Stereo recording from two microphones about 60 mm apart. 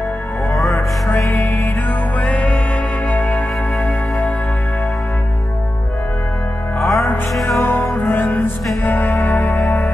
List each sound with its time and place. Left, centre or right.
1.1 s music: left
6.8 s music: centre
7.9 s music: left